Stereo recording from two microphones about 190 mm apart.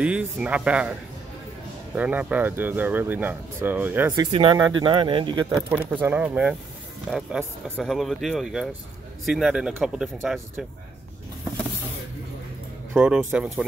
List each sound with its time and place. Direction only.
0.0 s speech: 5° right (ahead or behind)
2.0 s speech: 5° right (ahead or behind)
4.1 s speech: 25° right (ahead or behind)
5.6 s speech: 10° right (ahead or behind)
12.9 s speech: 5° right (ahead or behind)